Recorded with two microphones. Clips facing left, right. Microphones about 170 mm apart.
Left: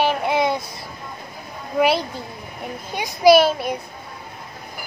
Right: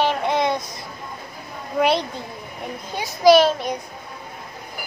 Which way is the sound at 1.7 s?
5° left (ahead or behind).